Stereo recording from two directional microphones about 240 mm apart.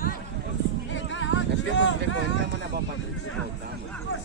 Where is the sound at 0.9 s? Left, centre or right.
Left.